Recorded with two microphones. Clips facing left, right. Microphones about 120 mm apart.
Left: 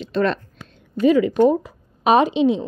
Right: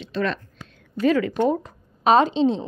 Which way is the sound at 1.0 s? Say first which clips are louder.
Left 5 dB; 15° left (ahead or behind).